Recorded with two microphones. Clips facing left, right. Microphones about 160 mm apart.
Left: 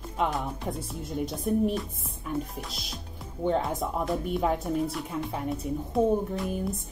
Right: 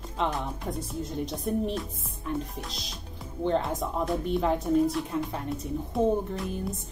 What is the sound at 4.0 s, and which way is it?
A woman's voice, centre (ahead or behind).